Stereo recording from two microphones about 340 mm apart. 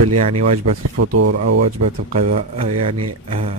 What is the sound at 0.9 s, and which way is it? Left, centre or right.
Speech, right.